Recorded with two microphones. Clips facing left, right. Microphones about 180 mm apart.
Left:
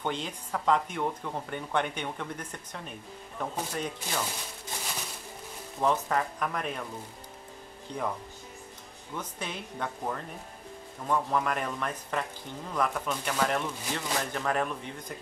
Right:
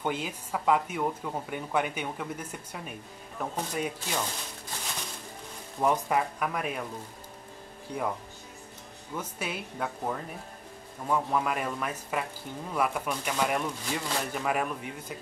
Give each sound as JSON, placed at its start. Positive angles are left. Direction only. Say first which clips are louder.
{"t": 0.0, "sound": "speech", "louder": "right 1 dB", "side_deg": -5}
{"t": 5.8, "sound": "speech", "louder": "right 1 dB", "side_deg": -10}
{"t": 7.9, "sound": "speech", "louder": "right 2 dB", "side_deg": -10}
{"t": 9.1, "sound": "speech", "louder": "right 2 dB", "side_deg": -10}